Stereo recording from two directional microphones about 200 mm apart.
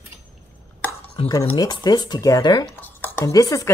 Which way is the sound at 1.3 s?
15° left (ahead or behind).